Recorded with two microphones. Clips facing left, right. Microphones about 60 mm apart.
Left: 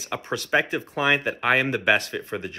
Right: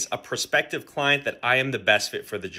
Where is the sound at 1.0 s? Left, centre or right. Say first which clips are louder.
Left 2 dB; left.